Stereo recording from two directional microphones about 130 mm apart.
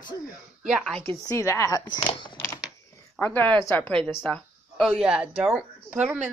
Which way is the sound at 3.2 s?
15° left (ahead or behind).